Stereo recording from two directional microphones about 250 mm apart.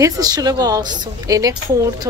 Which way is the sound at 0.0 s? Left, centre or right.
Centre.